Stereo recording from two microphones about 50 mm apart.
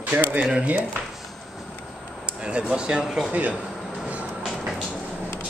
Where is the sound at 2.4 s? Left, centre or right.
Centre.